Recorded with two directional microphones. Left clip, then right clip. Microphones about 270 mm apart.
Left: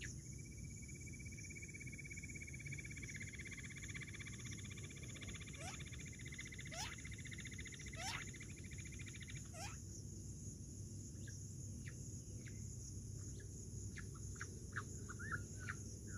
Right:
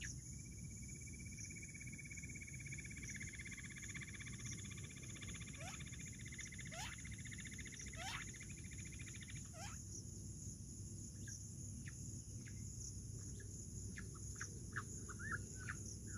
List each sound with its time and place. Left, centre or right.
2.7 s frog: centre
8.0 s cricket: left
14.4 s bird: centre